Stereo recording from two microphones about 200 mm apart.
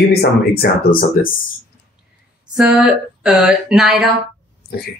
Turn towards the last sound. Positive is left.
turn(degrees=0)  # may be behind; listen again after turning